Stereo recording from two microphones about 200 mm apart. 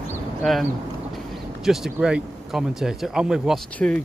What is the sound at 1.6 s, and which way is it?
Speech, centre (ahead or behind).